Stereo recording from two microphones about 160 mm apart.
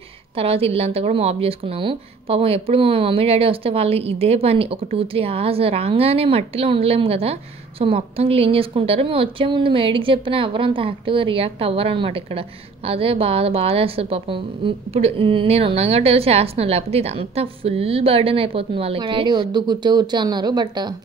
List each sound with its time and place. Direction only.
0.4 s a woman's voice: 40° right (ahead or behind)